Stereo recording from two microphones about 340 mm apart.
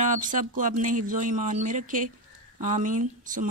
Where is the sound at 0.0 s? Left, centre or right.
Right.